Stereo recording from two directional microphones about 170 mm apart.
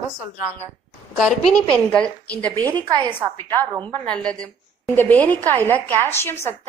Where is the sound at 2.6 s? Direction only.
25° right (ahead or behind).